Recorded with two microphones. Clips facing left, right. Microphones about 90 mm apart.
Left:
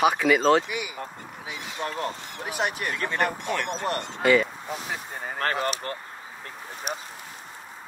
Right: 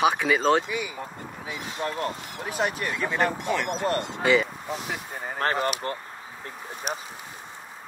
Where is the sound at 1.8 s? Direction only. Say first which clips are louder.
Right 1 dB; 5° right (ahead or behind).